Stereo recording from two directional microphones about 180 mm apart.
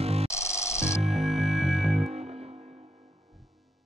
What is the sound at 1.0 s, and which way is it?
Music, 35° right (ahead or behind).